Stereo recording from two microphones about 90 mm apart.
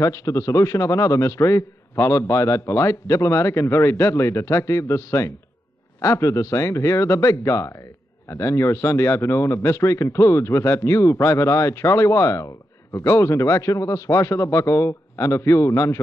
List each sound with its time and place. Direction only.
0.0 s speech: 35° left (ahead or behind)